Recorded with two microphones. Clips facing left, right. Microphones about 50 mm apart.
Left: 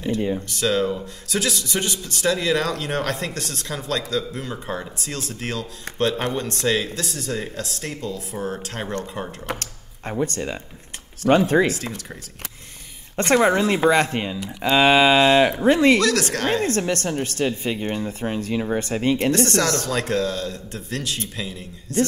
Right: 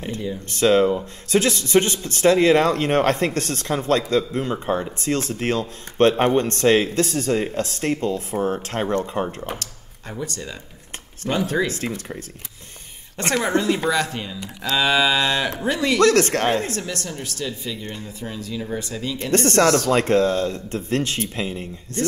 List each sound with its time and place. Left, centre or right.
0.5 s speech: right
9.6 s a woman's voice: left
13.2 s a woman's voice: left
16.0 s speech: right
16.6 s a woman's voice: left
19.3 s speech: right